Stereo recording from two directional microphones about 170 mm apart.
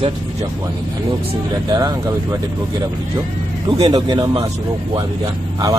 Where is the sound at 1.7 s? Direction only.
20° right (ahead or behind).